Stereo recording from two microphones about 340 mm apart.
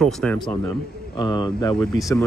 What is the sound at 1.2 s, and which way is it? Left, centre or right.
Speech, centre.